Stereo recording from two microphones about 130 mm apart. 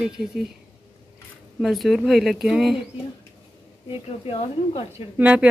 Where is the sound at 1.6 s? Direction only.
Centre (ahead or behind).